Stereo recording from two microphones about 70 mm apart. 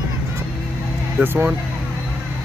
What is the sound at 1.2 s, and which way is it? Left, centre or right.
Speech, right.